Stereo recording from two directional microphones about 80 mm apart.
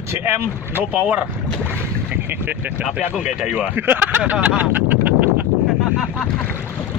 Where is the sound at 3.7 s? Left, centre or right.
Right.